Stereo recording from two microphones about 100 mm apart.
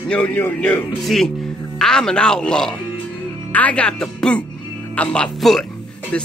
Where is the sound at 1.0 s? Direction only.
5° left (ahead or behind).